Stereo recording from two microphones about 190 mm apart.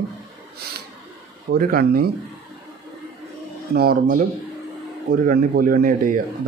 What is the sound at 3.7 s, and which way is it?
Speech, 55° right (ahead or behind).